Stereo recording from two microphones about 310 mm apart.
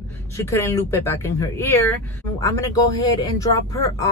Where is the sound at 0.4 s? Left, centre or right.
Centre.